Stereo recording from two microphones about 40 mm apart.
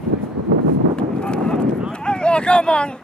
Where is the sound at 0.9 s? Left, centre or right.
Left.